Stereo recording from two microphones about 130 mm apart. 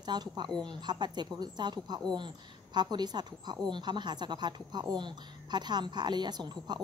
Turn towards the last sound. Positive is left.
turn(degrees=-35)  # may be behind; listen again after turning